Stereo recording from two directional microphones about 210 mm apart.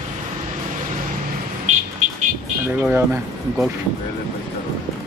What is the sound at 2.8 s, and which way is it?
Speech, 5° right (ahead or behind).